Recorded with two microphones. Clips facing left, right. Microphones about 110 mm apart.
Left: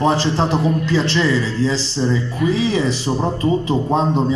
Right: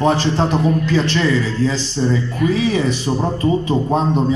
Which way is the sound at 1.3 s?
30° left (ahead or behind).